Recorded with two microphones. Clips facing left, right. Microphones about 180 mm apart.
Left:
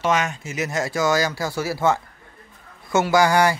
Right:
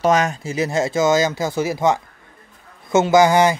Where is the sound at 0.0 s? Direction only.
40° right (ahead or behind).